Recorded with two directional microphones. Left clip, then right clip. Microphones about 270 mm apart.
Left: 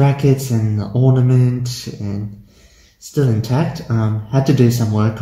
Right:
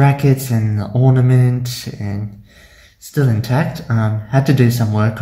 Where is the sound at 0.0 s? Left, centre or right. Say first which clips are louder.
Right 1 dB; right.